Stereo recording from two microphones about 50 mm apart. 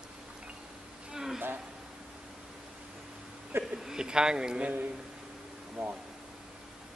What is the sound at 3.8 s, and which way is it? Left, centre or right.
Speech, centre.